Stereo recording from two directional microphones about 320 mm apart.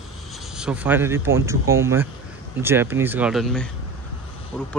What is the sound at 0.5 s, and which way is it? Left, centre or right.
Speech, centre.